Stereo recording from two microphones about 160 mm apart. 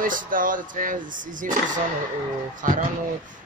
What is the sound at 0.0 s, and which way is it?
Speech, 60° right (ahead or behind).